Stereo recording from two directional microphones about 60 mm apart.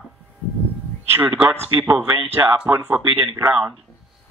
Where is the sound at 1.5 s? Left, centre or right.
Right.